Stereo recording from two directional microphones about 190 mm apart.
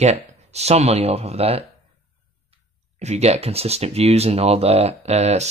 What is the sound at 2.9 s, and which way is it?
Speech, 35° right (ahead or behind).